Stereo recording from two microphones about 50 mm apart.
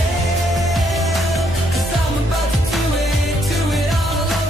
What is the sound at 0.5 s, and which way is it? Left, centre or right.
Music, centre.